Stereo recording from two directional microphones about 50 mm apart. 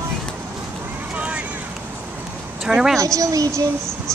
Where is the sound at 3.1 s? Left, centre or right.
Right.